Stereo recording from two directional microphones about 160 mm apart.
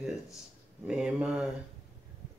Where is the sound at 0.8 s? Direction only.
5° right (ahead or behind).